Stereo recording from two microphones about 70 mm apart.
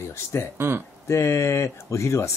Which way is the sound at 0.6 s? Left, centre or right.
Right.